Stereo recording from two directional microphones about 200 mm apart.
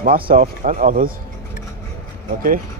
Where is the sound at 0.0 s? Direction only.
45° right (ahead or behind).